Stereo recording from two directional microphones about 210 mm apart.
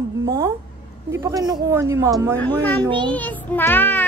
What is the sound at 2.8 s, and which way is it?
Speech, 20° right (ahead or behind).